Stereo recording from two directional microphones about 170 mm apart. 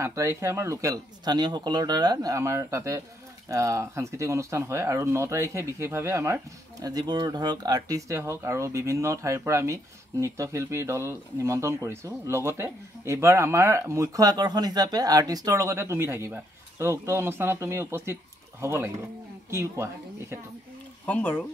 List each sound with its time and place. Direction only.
0.0 s speech: 15° right (ahead or behind)
21.0 s speech: 10° left (ahead or behind)